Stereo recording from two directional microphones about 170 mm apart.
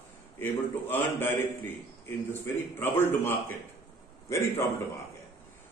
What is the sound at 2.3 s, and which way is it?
A man's voice, 15° left (ahead or behind).